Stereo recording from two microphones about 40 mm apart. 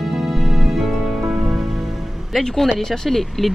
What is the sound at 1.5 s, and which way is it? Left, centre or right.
Music, centre.